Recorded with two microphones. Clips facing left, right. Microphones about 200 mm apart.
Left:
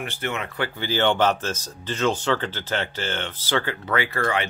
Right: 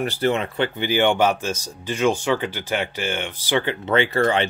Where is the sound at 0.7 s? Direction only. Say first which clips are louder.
Right 2 dB; 15° right (ahead or behind).